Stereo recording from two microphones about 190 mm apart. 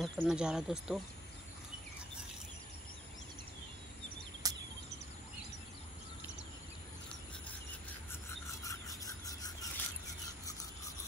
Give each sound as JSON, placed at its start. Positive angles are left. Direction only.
{"t": 0.0, "sound": "speech", "side_deg": -5}
{"t": 4.4, "sound": "a sound", "side_deg": -20}
{"t": 8.6, "sound": "rub", "side_deg": 20}